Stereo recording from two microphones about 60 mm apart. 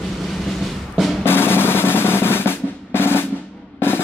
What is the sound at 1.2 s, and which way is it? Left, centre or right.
Drum roll, left.